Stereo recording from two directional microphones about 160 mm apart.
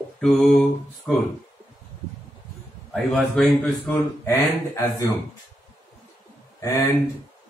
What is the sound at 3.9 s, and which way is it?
Speech, 15° left (ahead or behind).